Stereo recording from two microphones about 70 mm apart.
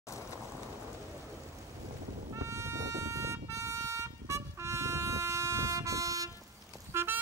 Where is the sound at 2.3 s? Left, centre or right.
Right.